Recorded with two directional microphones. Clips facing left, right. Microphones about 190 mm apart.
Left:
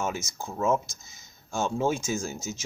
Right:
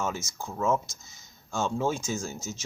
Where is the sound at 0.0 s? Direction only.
15° left (ahead or behind).